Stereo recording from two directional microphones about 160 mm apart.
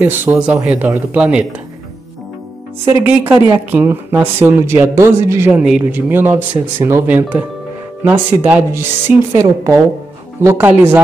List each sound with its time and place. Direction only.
0.0 s speech: 15° right (ahead or behind)
2.8 s speech: 15° right (ahead or behind)
5.5 s speech: 5° right (ahead or behind)